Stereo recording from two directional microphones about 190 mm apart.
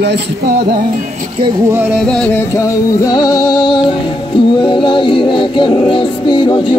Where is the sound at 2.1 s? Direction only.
5° left (ahead or behind).